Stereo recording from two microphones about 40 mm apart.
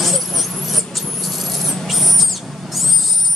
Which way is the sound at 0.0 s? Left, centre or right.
Centre.